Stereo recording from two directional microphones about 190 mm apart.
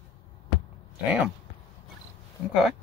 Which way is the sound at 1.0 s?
5° right (ahead or behind).